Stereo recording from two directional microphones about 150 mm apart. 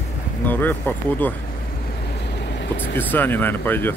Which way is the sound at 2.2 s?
90° left.